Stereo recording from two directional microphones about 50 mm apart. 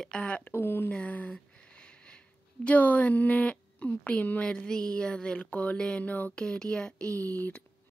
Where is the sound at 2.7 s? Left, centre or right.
Left.